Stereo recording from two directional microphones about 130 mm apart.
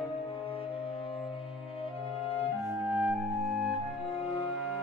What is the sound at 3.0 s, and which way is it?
Music, 5° right (ahead or behind).